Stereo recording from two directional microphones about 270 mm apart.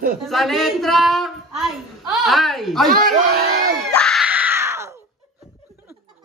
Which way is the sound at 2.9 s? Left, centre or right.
Right.